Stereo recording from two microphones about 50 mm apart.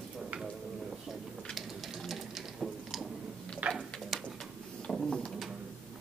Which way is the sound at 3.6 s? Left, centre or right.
Right.